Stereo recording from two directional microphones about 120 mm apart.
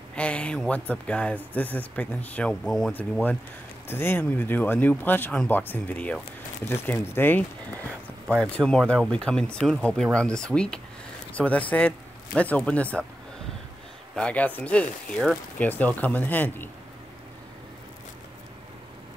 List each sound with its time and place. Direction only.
0.1 s speech: 10° left (ahead or behind)
14.1 s speech: 10° left (ahead or behind)